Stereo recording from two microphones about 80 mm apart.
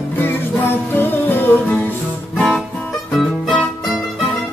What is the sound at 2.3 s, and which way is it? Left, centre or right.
Guitar, centre.